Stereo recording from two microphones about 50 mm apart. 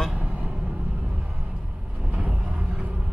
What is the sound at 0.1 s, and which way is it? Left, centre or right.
Vehicle, right.